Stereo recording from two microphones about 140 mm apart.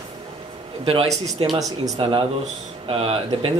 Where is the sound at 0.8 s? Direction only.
45° right (ahead or behind).